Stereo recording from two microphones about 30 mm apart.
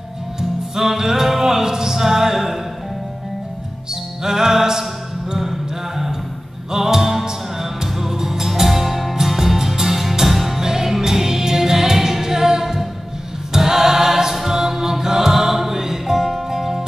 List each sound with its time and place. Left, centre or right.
0.4 s music: centre
3.9 s music: centre
13.5 s choir: centre
14.3 s music: centre